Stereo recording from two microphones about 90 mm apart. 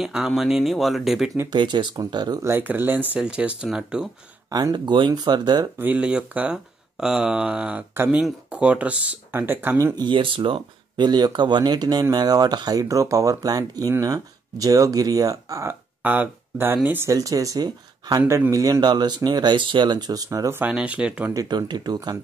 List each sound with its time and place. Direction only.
0.0 s speech: 5° right (ahead or behind)
1.5 s speech: 60° right (ahead or behind)
2.4 s speech: 25° right (ahead or behind); by 4.1 s 5° right (ahead or behind)
4.5 s speech: 45° right (ahead or behind)
5.8 s speech: 15° right (ahead or behind)
9.9 s speech: 60° right (ahead or behind)
11.1 s speech: 50° right (ahead or behind)
16.0 s speech: 20° right (ahead or behind)
17.1 s speech: 40° right (ahead or behind)
18.2 s speech: 20° right (ahead or behind)
18.5 s speech: 45° right (ahead or behind)
20.2 s speech: 30° right (ahead or behind)
20.6 s speech: 15° right (ahead or behind)
21.3 s speech: 45° right (ahead or behind)